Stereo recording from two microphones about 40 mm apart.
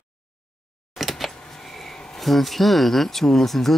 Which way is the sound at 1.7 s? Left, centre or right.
Centre.